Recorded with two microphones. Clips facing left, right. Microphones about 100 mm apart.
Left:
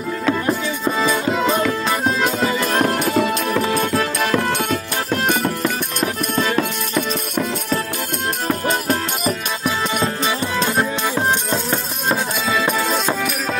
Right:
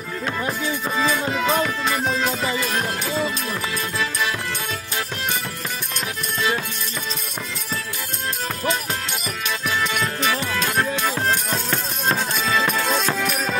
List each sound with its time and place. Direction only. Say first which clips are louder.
2.6 s music: left 7 dB; 55° left (ahead or behind)
8.6 s music: left 2 dB; 50° left (ahead or behind)
9.9 s music: left 3 dB; 30° left (ahead or behind)
12.7 s music: left 2 dB; 10° left (ahead or behind)